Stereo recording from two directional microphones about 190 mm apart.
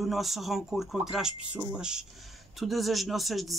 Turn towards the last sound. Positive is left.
turn(degrees=0)  # may be behind; listen again after turning